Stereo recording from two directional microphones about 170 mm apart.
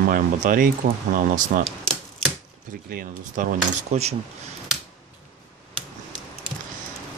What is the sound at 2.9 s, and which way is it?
Cutlery, 55° right (ahead or behind).